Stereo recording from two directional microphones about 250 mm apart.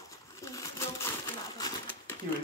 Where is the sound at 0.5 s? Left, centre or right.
Centre.